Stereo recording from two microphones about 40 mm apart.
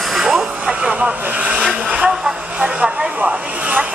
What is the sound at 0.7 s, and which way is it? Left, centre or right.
Vehicle, right.